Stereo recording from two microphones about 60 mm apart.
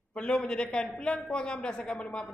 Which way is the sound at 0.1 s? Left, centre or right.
Centre.